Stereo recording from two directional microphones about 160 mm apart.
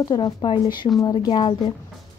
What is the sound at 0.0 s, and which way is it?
Speech, 25° left (ahead or behind).